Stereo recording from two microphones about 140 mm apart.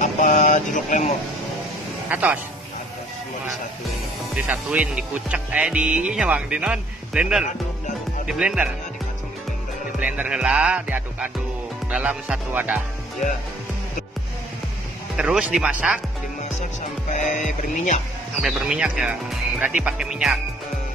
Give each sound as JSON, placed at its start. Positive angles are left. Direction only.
{"t": 0.0, "sound": "vehicle", "side_deg": 65}
{"t": 2.0, "sound": "speech", "side_deg": -10}
{"t": 4.5, "sound": "speech", "side_deg": -10}
{"t": 9.9, "sound": "speech", "side_deg": -10}
{"t": 15.1, "sound": "speech", "side_deg": -10}
{"t": 17.1, "sound": "music", "side_deg": 60}
{"t": 18.4, "sound": "speech", "side_deg": -5}